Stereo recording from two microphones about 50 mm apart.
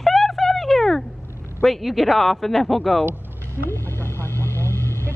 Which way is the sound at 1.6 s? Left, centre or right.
Centre.